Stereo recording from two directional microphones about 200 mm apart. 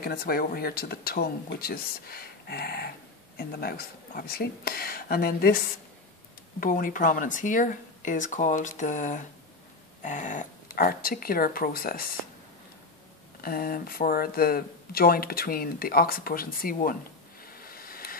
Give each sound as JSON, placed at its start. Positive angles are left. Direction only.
{"t": 0.0, "sound": "speech", "side_deg": 50}
{"t": 6.6, "sound": "speech", "side_deg": 45}
{"t": 13.4, "sound": "speech", "side_deg": 45}
{"t": 17.4, "sound": "a sound", "side_deg": 45}